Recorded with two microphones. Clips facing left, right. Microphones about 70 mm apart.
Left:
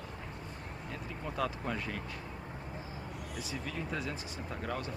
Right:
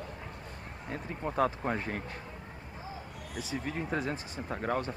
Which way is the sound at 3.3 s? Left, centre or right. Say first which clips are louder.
Right 5 dB; right.